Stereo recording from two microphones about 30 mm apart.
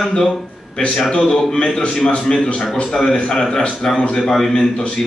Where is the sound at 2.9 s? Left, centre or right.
Centre.